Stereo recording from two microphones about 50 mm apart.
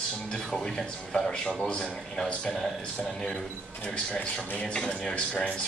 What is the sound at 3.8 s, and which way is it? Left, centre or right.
Speech, centre.